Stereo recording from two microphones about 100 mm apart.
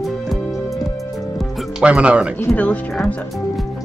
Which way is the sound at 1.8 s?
10° right (ahead or behind).